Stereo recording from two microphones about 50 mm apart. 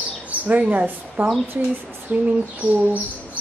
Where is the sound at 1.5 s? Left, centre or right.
Right.